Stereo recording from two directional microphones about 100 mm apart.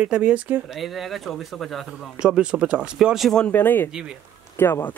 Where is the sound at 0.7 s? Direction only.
Centre (ahead or behind).